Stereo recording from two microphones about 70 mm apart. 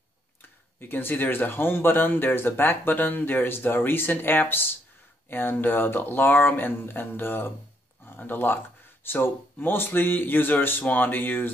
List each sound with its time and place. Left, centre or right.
0.7 s speech: left